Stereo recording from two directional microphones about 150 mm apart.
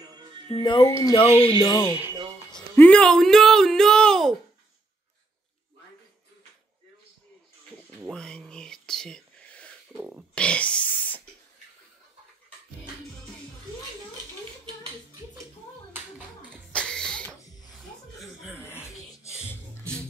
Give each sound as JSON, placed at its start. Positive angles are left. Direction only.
{"t": 0.0, "sound": "music", "side_deg": -30}
{"t": 0.6, "sound": "speech", "side_deg": 30}
{"t": 0.8, "sound": "speech", "side_deg": 20}
{"t": 1.4, "sound": "speech", "side_deg": 30}
{"t": 2.7, "sound": "speech", "side_deg": 10}
{"t": 8.1, "sound": "whispering", "side_deg": 5}
{"t": 9.9, "sound": "a sound", "side_deg": -10}
{"t": 10.3, "sound": "a sound", "side_deg": 5}
{"t": 16.7, "sound": "a sound", "side_deg": 5}
{"t": 17.6, "sound": "chuckle", "side_deg": 0}
{"t": 18.6, "sound": "music", "side_deg": 15}